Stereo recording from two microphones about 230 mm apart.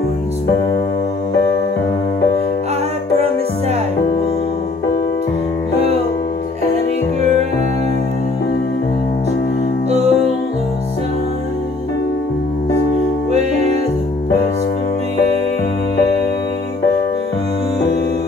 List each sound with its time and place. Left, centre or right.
7.2 s music: right
9.8 s music: right
13.3 s music: right